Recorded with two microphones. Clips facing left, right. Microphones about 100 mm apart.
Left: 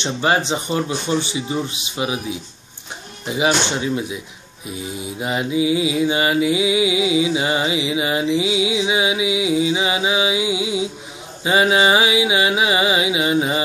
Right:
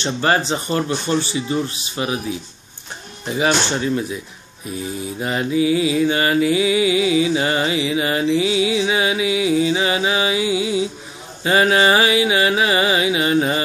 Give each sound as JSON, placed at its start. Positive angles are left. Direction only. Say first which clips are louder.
{"t": 0.0, "sound": "mantra", "louder": "even", "side_deg": 15}
{"t": 3.3, "sound": "mantra", "louder": "even", "side_deg": 15}